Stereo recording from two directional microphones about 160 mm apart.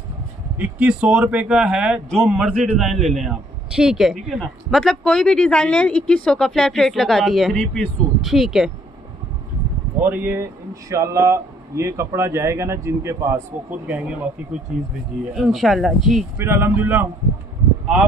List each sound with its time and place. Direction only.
0.6 s speech: 5° right (ahead or behind)
9.9 s speech: 10° right (ahead or behind)
16.3 s speech: 15° right (ahead or behind)